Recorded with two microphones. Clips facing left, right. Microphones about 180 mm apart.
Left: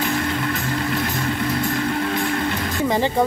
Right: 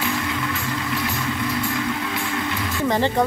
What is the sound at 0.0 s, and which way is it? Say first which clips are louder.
Vehicle: left 3 dB; 45° left (ahead or behind).